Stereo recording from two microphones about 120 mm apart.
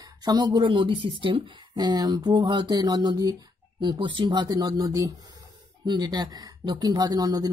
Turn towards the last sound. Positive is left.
turn(degrees=-35)  # may be behind; listen again after turning